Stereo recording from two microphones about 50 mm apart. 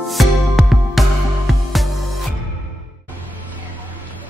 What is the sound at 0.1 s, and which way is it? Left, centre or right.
Music, centre.